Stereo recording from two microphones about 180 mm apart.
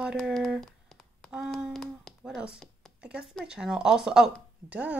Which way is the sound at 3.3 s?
5° right (ahead or behind).